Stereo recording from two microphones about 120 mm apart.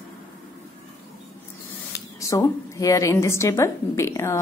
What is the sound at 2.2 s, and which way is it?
A woman's voice, 25° left (ahead or behind).